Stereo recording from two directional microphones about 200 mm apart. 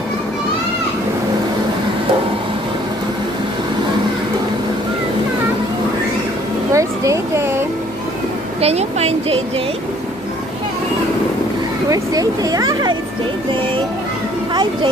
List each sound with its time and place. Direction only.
6.7 s a sound: 15° right (ahead or behind)
8.5 s speech: 30° right (ahead or behind)
11.9 s speech: 15° right (ahead or behind)
14.5 s speech: 25° right (ahead or behind)